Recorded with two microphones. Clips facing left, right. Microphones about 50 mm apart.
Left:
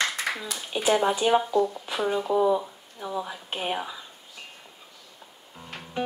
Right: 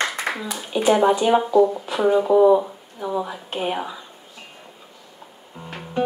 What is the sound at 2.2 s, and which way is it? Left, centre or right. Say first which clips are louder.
Speech: right 8 dB; right.